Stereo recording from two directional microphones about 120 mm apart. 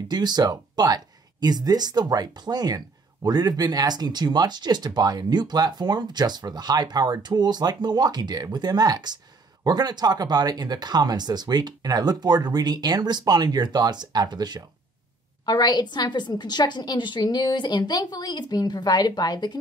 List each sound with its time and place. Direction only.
0.1 s speech: 35° right (ahead or behind)
15.4 s a woman's voice: 35° left (ahead or behind)